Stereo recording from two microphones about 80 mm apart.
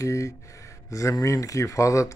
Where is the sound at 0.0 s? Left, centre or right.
Left.